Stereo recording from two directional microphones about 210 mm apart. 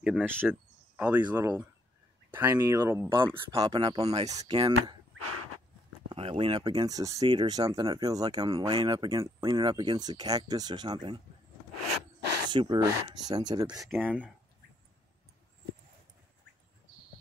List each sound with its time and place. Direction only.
0.0 s speech: 5° right (ahead or behind)
5.2 s a sound: 90° right
6.0 s speech: 25° right (ahead or behind)
12.4 s speech: 20° right (ahead or behind)
13.9 s speech: 10° right (ahead or behind)